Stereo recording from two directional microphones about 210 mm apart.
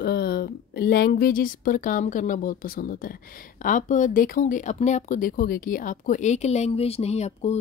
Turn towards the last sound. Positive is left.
turn(degrees=30)  # may be behind; listen again after turning